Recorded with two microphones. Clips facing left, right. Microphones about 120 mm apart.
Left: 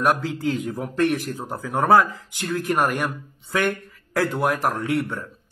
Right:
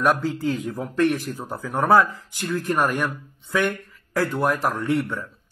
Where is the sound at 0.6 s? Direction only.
15° left (ahead or behind).